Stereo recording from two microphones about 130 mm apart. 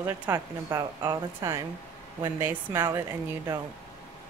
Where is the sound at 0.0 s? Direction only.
25° right (ahead or behind).